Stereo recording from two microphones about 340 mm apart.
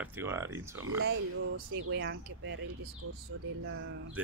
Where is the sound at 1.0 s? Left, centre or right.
Right.